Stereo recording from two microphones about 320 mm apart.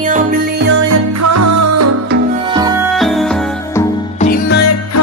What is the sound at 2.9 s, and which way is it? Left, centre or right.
Music, centre.